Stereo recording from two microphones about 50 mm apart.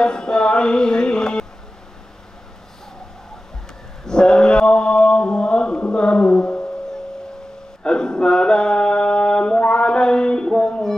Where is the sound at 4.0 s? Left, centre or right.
Centre.